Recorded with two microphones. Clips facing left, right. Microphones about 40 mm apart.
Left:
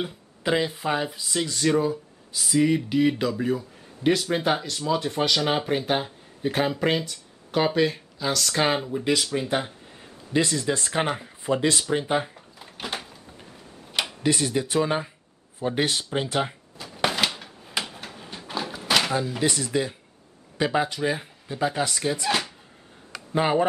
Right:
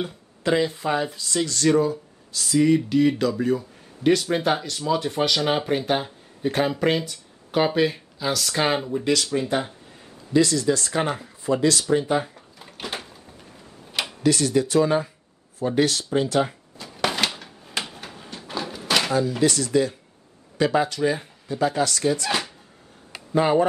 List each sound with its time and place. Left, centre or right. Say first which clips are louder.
0.0 s speech: right 2 dB; centre
9.0 s speech: right 2 dB; centre
10.3 s speech: right 4 dB; left
12.4 s drawer open or close: even; centre
14.2 s speech: right 5 dB; centre
15.6 s a sound: right 3 dB; left; by 19.2 s centre
19.4 s speech: right 4 dB; centre
23.3 s speech: right 3 dB; centre